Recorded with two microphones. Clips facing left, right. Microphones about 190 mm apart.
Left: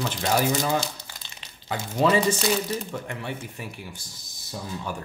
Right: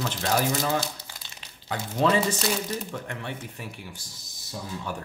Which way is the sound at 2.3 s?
5° left (ahead or behind).